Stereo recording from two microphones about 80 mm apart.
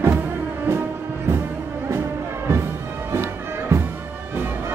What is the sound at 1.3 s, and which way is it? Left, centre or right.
Music, right.